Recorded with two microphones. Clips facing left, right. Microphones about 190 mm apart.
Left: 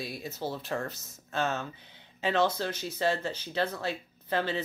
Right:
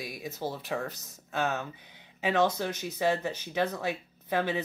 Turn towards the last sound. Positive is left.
turn(degrees=-15)  # may be behind; listen again after turning